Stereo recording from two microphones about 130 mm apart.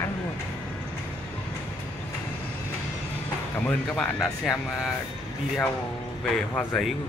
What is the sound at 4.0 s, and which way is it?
Speech, centre (ahead or behind).